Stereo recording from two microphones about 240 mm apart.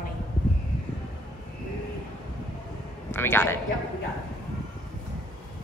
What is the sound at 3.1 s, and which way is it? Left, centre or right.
Speech, centre.